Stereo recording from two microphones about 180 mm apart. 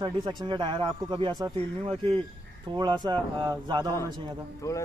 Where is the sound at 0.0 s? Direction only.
25° right (ahead or behind).